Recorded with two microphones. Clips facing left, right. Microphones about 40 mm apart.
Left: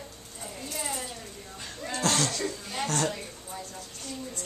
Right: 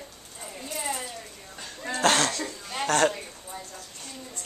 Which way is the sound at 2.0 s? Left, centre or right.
Right.